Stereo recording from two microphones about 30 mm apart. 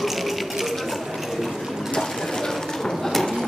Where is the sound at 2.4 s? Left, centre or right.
Centre.